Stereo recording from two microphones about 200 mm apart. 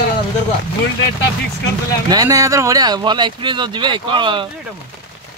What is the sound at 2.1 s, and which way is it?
Speech, 15° right (ahead or behind).